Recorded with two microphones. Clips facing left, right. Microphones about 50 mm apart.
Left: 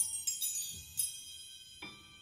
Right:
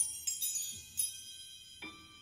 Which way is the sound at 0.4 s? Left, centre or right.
Right.